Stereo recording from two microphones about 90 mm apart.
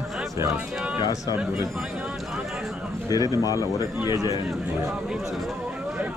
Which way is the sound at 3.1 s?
45° left (ahead or behind).